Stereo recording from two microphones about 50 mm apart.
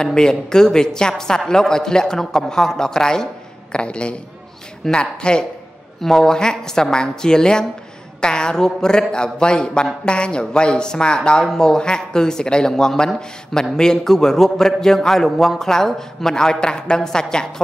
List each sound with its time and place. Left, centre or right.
0.0 s a man's voice: centre
5.9 s speech: centre